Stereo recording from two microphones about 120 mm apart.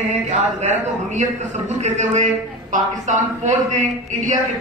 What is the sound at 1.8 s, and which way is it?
A man's voice, 75° right (ahead or behind).